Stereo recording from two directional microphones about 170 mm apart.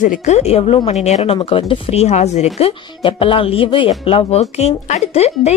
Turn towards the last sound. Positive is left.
turn(degrees=40)  # may be behind; listen again after turning